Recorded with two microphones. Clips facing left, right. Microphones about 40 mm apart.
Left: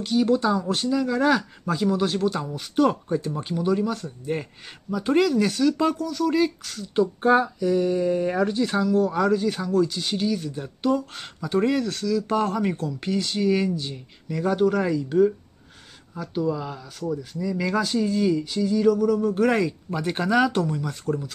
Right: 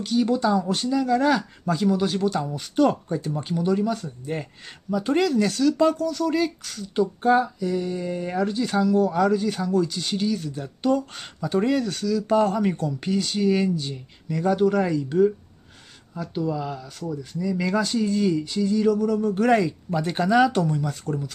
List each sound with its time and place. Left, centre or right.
0.0 s speech: centre
7.2 s a sound: left
7.4 s speech: centre